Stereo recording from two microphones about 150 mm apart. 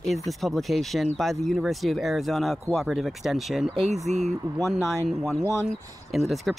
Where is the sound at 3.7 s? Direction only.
45° right (ahead or behind).